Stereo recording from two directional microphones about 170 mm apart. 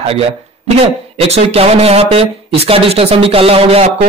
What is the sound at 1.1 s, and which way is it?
Speech, 35° right (ahead or behind).